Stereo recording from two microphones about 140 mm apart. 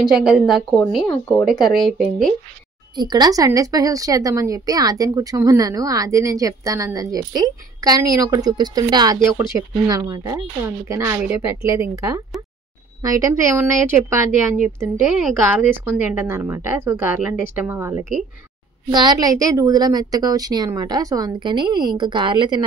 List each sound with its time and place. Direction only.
0.2 s speech: 5° right (ahead or behind)
1.8 s speech: centre (ahead or behind)
3.0 s a woman's voice: 30° right (ahead or behind)
18.9 s a woman's voice: 30° right (ahead or behind)